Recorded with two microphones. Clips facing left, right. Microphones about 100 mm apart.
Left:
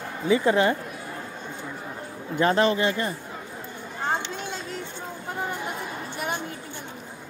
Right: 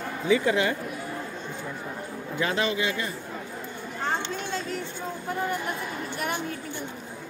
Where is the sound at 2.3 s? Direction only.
40° left (ahead or behind).